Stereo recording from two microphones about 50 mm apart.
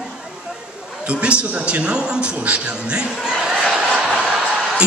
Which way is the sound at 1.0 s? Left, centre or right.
Right.